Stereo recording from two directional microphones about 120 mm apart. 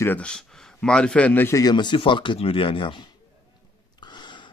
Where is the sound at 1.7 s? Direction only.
40° left (ahead or behind).